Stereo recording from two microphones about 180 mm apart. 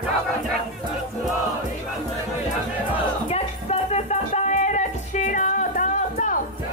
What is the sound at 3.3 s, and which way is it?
Music, 35° left (ahead or behind).